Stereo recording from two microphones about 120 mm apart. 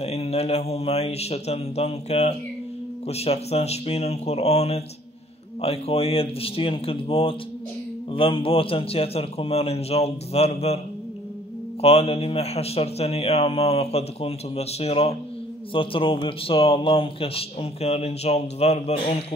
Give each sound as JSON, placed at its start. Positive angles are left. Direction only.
{"t": 0.0, "sound": "a man's voice", "side_deg": 60}
{"t": 11.8, "sound": "a man's voice", "side_deg": 55}
{"t": 15.7, "sound": "speech", "side_deg": 45}